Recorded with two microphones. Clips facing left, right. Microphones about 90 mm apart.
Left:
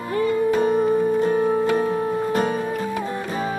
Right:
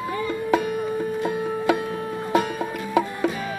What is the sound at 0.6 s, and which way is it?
Music, 35° left (ahead or behind).